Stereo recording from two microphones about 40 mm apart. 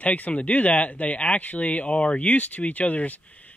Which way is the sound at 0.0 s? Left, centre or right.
Left.